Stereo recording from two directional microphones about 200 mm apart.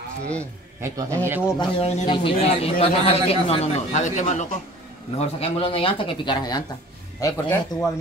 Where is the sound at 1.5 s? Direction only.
25° left (ahead or behind).